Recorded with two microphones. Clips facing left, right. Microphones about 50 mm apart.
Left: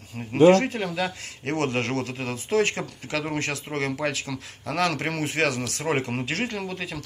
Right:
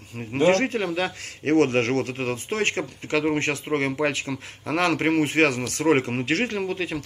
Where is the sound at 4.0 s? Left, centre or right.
Right.